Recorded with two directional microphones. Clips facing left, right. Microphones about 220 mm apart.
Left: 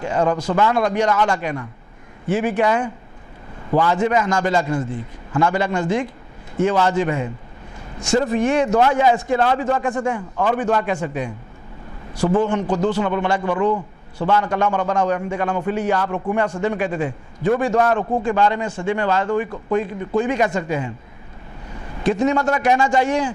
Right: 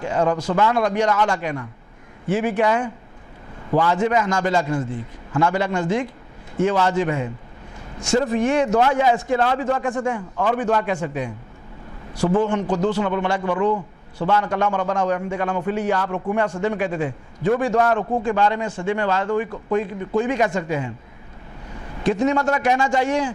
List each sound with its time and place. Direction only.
0.0 s a man's voice: 15° left (ahead or behind)